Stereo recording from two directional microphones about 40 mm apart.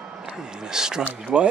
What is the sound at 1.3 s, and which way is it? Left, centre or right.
Speech, right.